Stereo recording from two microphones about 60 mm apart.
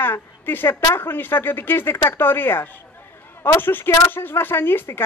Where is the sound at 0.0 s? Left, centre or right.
Left.